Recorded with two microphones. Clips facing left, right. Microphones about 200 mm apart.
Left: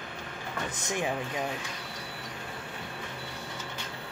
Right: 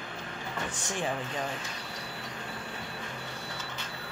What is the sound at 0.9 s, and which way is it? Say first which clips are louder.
Speech: left 2 dB; 10° left (ahead or behind).